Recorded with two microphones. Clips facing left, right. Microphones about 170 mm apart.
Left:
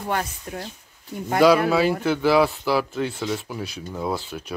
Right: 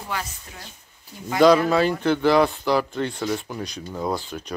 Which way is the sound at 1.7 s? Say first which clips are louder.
Even; 5° left (ahead or behind).